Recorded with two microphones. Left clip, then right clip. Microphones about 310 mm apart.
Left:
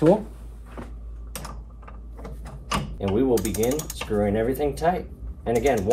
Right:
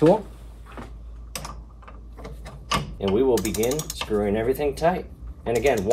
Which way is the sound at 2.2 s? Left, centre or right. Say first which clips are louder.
Right 3 dB; centre.